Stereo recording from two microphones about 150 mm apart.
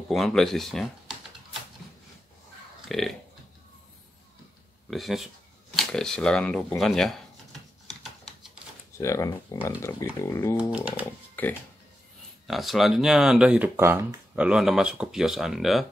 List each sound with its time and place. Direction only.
0.1 s speech: centre (ahead or behind)
2.9 s speech: centre (ahead or behind)
4.9 s speech: centre (ahead or behind)
8.9 s speech: 20° left (ahead or behind)
10.6 s speech: 10° right (ahead or behind)
11.1 s a sound: 10° left (ahead or behind)
12.4 s speech: centre (ahead or behind); by 14.4 s 15° right (ahead or behind)
14.4 s speech: 5° right (ahead or behind)